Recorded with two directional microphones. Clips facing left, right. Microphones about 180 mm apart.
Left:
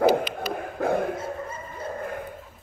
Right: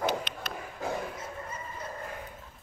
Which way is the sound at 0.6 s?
55° left (ahead or behind).